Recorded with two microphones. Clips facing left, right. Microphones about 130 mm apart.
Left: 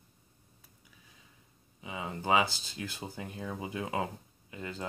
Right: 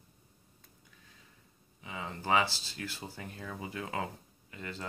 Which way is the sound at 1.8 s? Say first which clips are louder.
Left 3 dB; 20° left (ahead or behind).